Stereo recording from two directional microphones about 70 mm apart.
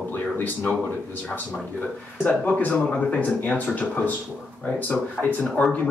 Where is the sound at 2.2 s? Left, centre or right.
Centre.